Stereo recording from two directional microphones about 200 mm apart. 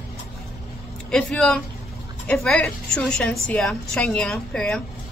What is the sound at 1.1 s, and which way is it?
A woman's voice, 5° left (ahead or behind).